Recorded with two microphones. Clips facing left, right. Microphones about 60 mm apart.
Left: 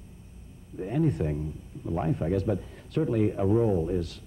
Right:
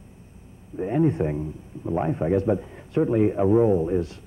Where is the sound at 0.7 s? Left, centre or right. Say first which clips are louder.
Right 5 dB; right.